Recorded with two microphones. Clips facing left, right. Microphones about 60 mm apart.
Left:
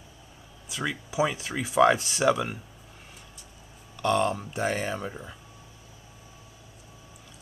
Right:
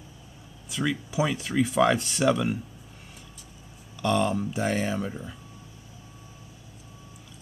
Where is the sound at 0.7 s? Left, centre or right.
Centre.